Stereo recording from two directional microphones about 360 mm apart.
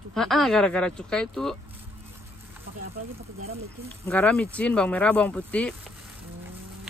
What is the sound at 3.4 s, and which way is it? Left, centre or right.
Speech, centre.